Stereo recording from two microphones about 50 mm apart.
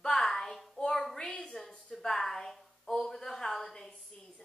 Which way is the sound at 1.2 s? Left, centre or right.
Centre.